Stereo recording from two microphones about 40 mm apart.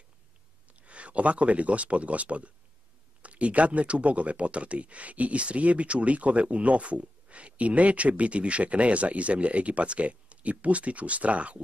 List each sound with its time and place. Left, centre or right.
0.8 s speech: right